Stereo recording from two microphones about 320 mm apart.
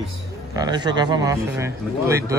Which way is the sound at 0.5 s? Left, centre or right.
Centre.